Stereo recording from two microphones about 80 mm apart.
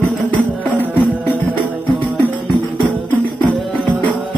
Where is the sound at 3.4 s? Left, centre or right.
Right.